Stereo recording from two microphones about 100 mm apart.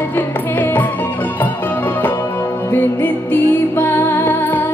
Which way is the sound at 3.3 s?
20° left (ahead or behind).